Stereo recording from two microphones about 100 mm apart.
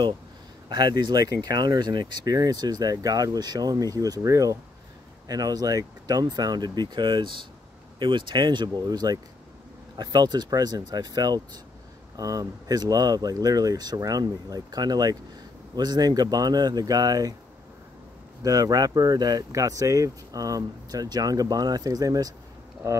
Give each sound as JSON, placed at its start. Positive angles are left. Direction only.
{"t": 0.7, "sound": "speech", "side_deg": -45}
{"t": 18.4, "sound": "speech", "side_deg": -35}